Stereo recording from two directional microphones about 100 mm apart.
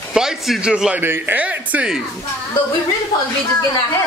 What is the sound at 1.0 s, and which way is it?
Speech, 20° right (ahead or behind).